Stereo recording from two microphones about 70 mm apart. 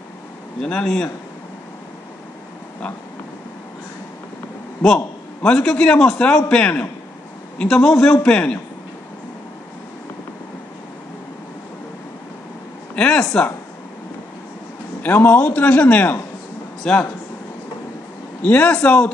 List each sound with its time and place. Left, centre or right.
0.6 s a man's voice: centre
4.8 s a man's voice: centre
12.9 s speech: centre
15.0 s a man's voice: left
18.4 s a man's voice: left